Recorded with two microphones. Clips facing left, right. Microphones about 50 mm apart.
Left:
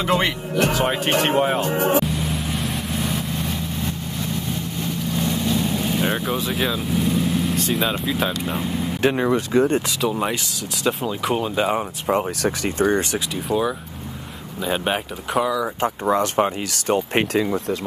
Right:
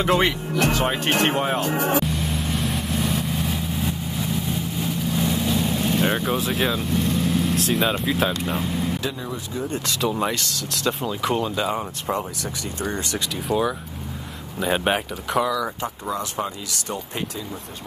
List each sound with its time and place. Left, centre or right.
0.0 s speech: centre
2.0 s vehicle: centre
9.0 s speech: left
10.0 s speech: centre
11.5 s speech: left
12.4 s speech: left
13.5 s speech: centre
15.4 s speech: centre
15.8 s speech: left